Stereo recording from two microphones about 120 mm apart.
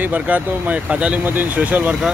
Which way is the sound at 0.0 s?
15° right (ahead or behind).